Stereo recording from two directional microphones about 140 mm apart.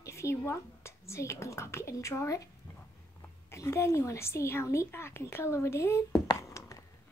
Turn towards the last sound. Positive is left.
turn(degrees=25)  # may be behind; listen again after turning